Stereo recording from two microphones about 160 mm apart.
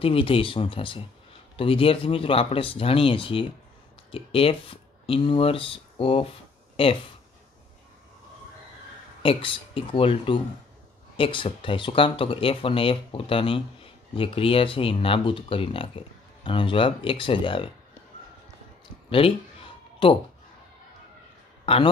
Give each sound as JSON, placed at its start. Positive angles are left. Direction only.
{"t": 0.0, "sound": "speech", "side_deg": 35}
{"t": 9.2, "sound": "speech", "side_deg": 35}
{"t": 19.0, "sound": "a sound", "side_deg": 35}